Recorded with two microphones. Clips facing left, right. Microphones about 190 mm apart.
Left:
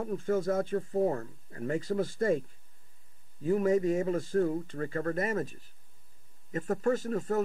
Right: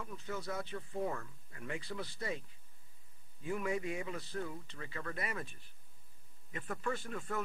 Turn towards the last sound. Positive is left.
turn(degrees=40)  # may be behind; listen again after turning